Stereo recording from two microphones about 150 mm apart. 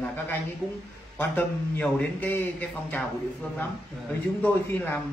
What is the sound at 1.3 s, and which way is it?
A man's voice, 10° left (ahead or behind).